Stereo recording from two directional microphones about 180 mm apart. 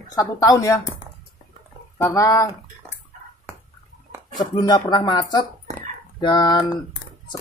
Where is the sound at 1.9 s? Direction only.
15° left (ahead or behind).